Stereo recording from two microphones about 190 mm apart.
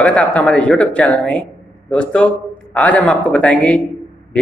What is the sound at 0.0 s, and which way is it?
Speech, 10° left (ahead or behind).